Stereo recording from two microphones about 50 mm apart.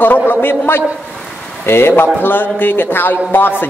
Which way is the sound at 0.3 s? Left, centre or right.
Left.